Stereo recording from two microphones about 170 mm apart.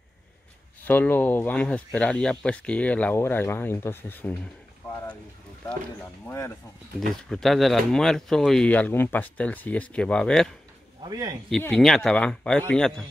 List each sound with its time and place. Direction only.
0.8 s speech: 10° left (ahead or behind)
6.2 s speech: 15° left (ahead or behind)
7.2 s speech: centre (ahead or behind)
11.1 s speech: 20° right (ahead or behind)
11.7 s speech: centre (ahead or behind)